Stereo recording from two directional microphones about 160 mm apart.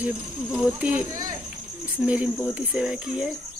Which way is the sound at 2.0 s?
5° right (ahead or behind).